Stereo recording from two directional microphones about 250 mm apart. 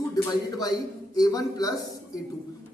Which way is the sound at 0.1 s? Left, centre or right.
Centre.